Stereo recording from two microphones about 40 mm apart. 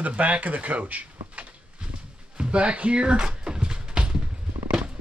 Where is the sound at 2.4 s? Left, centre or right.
Right.